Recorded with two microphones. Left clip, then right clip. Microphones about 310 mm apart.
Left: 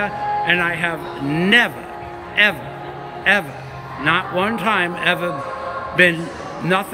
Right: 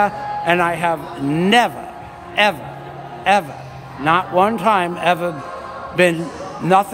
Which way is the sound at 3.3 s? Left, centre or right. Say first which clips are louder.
Right 1 dB; centre.